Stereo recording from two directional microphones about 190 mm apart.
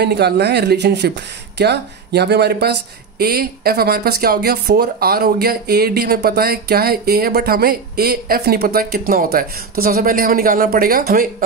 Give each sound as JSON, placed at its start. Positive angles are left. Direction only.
{"t": 0.0, "sound": "speech", "side_deg": -60}